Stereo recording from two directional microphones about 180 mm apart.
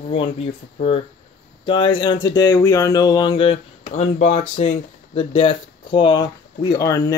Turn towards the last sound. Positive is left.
turn(degrees=20)  # may be behind; listen again after turning